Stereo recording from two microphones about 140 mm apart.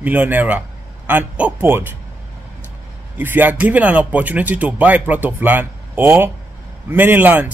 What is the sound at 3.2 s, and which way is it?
Speech, 15° right (ahead or behind).